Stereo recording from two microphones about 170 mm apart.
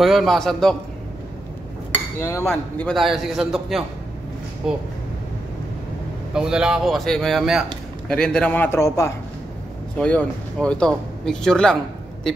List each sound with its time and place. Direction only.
0.0 s speech: centre (ahead or behind)
2.1 s a man's voice: 15° left (ahead or behind)
2.5 s speech: centre (ahead or behind)
6.3 s a man's voice: 5° right (ahead or behind); by 9.1 s 15° left (ahead or behind)
9.9 s speech: 5° left (ahead or behind)